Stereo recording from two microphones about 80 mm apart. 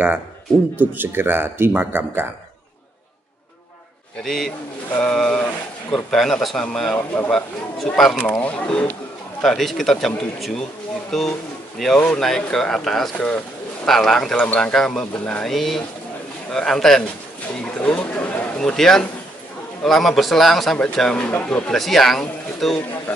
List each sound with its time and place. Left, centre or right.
0.7 s speech: right
4.2 s speech: centre
8.3 s speech: centre
20.7 s speech: centre